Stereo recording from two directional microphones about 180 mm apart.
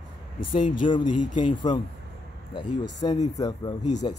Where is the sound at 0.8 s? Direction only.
25° left (ahead or behind).